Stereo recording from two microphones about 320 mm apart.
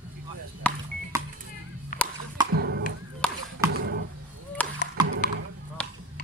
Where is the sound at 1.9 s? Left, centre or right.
Left.